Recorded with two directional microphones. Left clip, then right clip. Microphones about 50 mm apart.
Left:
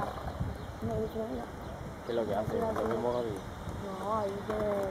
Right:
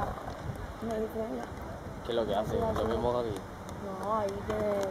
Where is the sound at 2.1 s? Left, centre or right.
Centre.